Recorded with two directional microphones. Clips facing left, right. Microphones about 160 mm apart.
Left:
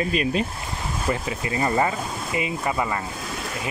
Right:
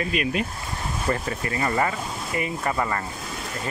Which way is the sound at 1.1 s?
10° left (ahead or behind).